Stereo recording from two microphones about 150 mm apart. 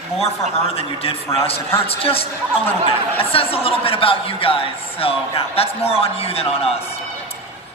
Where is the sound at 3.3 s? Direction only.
40° left (ahead or behind).